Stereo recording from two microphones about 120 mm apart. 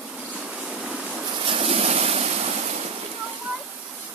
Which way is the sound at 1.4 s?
55° right (ahead or behind).